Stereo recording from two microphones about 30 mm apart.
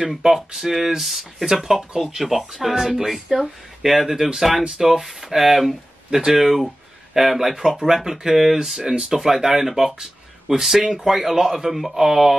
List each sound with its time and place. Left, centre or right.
0.6 s speech: centre
1.4 s speech: centre
6.1 s speech: centre
11.7 s speech: centre